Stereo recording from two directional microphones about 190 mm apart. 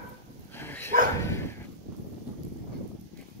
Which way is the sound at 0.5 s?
10° left (ahead or behind).